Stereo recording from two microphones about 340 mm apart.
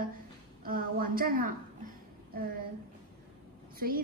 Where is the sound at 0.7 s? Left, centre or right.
Right.